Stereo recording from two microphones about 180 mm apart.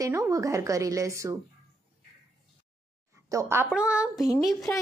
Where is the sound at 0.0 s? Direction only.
15° right (ahead or behind).